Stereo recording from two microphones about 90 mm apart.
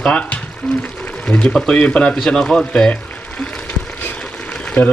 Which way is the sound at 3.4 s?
15° left (ahead or behind).